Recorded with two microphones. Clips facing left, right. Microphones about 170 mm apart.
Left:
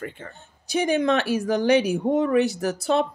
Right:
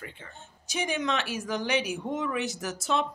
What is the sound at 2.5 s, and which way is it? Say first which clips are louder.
Speech: left 7 dB; 60° left (ahead or behind).